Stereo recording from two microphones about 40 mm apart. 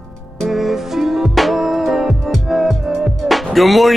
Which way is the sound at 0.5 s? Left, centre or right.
Centre.